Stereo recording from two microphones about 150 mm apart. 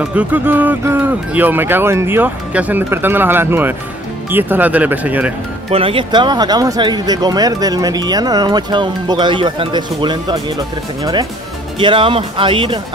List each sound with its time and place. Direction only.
0.0 s speech: 10° right (ahead or behind)
5.7 s speech: 35° right (ahead or behind)
11.8 s speech: 35° right (ahead or behind)